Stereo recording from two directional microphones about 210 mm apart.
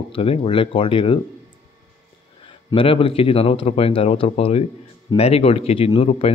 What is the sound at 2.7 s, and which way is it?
A man's voice, 25° left (ahead or behind).